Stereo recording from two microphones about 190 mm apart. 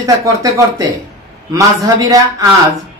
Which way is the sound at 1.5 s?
20° right (ahead or behind).